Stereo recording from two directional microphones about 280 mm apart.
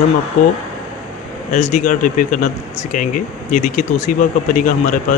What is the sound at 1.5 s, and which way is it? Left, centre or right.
Speech, left.